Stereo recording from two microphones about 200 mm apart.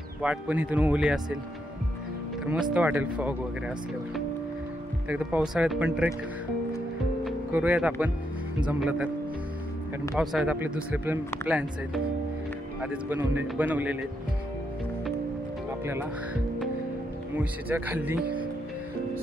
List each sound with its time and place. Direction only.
0.2 s speech: 5° right (ahead or behind)
2.7 s speech: 10° right (ahead or behind)
7.5 s speech: 5° right (ahead or behind)
10.3 s speech: 5° right (ahead or behind)
15.8 s speech: 10° right (ahead or behind)
17.4 s speech: 10° right (ahead or behind)